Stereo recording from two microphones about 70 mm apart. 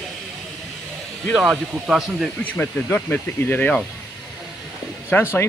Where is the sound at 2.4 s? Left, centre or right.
Left.